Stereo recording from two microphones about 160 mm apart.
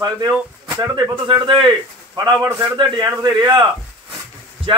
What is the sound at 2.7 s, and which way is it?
Speech, 25° right (ahead or behind).